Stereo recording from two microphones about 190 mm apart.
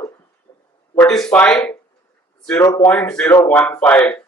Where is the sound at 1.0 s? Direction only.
5° left (ahead or behind).